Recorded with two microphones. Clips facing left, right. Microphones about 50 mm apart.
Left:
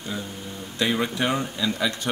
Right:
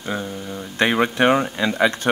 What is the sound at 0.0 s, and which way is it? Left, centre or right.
Speech, right.